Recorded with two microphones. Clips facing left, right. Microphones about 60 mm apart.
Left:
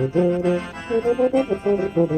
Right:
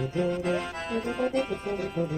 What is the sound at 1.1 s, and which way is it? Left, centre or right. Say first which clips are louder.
Music: left 11 dB; centre.